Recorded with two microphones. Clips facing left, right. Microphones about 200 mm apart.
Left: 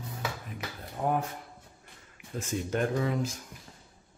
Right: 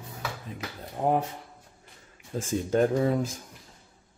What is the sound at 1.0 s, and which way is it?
Speech, 25° right (ahead or behind).